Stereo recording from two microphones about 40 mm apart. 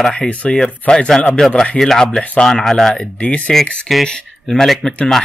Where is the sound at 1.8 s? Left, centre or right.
Centre.